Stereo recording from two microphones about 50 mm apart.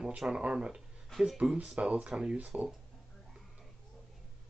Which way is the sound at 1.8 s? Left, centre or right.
Right.